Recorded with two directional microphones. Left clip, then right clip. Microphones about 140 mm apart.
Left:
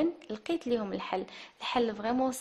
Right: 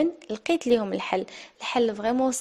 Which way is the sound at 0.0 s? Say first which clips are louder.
Right 6 dB; 50° right (ahead or behind).